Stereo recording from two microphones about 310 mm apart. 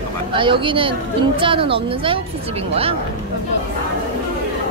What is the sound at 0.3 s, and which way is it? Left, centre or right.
A woman's voice, centre.